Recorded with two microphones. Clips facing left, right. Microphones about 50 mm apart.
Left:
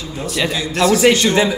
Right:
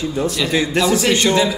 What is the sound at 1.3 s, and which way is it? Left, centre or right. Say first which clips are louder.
Speech: even; centre.